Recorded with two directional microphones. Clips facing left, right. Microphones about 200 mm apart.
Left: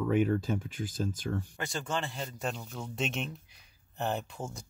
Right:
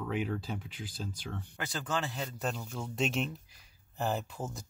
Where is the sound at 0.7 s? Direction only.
45° left (ahead or behind).